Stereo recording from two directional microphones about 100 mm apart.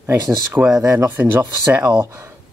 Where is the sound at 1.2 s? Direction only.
20° right (ahead or behind).